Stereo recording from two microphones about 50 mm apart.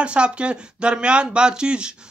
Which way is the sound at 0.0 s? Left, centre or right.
Right.